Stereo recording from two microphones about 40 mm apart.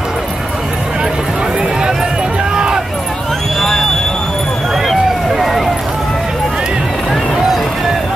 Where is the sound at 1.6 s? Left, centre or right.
Centre.